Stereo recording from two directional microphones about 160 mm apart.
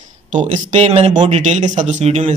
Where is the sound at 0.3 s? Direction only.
50° right (ahead or behind).